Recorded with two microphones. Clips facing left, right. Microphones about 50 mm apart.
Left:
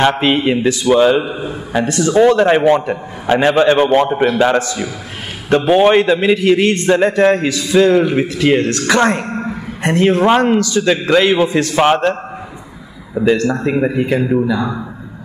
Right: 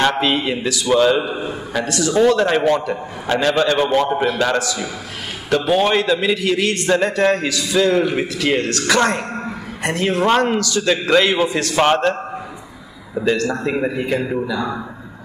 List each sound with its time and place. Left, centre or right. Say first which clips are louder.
0.2 s a man's voice: left 5 dB; left
0.8 s a man's voice: left 3 dB; centre
1.3 s a man's voice: left 1 dB; centre
1.7 s a man's voice: left 5 dB; left
7.9 s a man's voice: left 4 dB; centre
8.5 s a man's voice: left 3 dB; left
9.2 s a sound: left 4 dB; centre
9.8 s a man's voice: left 5 dB; centre
10.9 s a man's voice: left 2 dB; centre